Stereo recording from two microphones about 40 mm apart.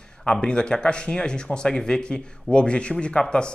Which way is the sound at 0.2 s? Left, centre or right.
Left.